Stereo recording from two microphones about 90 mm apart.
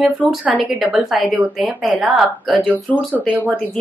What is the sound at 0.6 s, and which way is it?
Speech, 5° right (ahead or behind).